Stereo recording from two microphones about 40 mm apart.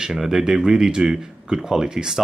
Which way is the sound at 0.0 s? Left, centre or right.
Centre.